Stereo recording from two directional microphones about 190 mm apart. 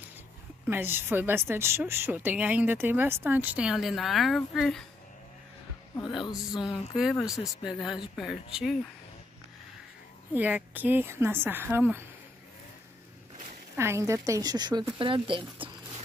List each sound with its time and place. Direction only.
0.7 s a woman's voice: 10° right (ahead or behind)
5.9 s heart sounds: 25° left (ahead or behind)
7.0 s speech: centre (ahead or behind)
7.2 s speech: 20° left (ahead or behind)
7.6 s speech: centre (ahead or behind)
10.3 s a woman's voice: 10° right (ahead or behind)
13.7 s speech: 15° right (ahead or behind)